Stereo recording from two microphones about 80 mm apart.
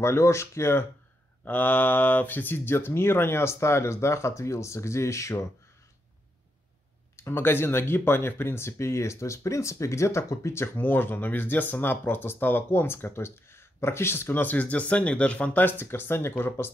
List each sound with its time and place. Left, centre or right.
0.0 s speech: left
7.2 s speech: left